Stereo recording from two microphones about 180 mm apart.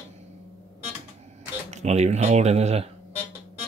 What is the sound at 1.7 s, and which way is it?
Speech, 40° right (ahead or behind).